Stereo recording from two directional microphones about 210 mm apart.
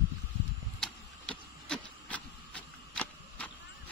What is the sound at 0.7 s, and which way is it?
Printer, 5° left (ahead or behind).